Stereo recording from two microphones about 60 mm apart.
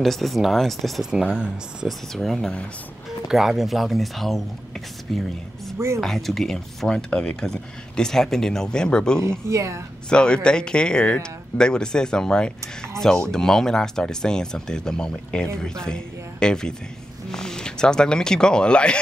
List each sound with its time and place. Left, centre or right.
0.0 s speech: centre
1.1 s speech: centre
1.9 s speech: centre
3.3 s speech: centre
9.5 s speech: right
10.0 s speech: centre